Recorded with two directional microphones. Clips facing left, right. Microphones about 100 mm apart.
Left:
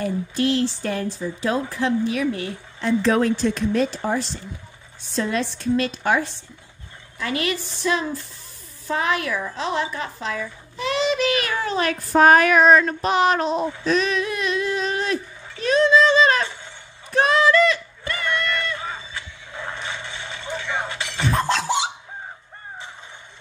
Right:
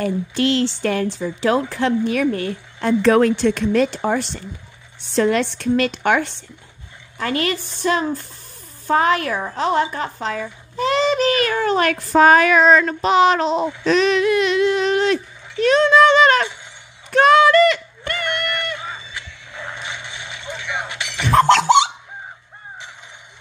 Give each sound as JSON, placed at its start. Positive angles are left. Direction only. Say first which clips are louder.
{"t": 0.0, "sound": "a woman's voice", "louder": "right 3 dB", "side_deg": -80}
{"t": 7.2, "sound": "a woman's voice", "louder": "right 3 dB", "side_deg": -50}
{"t": 12.7, "sound": "a sound", "louder": "right 3 dB", "side_deg": -90}
{"t": 17.1, "sound": "run", "louder": "right 5 dB", "side_deg": -65}
{"t": 19.7, "sound": "a sound", "louder": "left 1 dB", "side_deg": -15}
{"t": 21.2, "sound": "scratching", "louder": "right 8 dB", "side_deg": -75}